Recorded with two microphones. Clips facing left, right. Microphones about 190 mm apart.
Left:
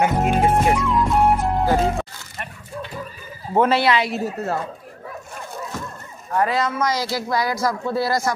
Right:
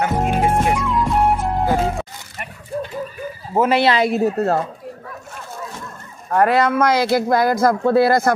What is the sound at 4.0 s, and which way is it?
Speech, 60° right (ahead or behind).